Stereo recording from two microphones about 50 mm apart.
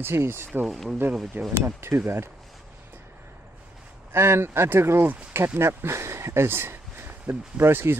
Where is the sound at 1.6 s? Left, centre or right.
Right.